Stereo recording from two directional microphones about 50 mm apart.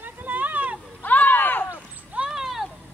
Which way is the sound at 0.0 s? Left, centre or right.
Right.